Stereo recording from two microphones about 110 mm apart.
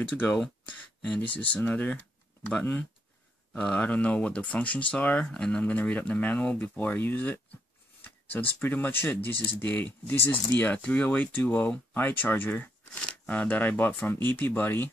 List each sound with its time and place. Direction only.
0.1 s speech: 15° left (ahead or behind)
0.4 s speech: 5° left (ahead or behind)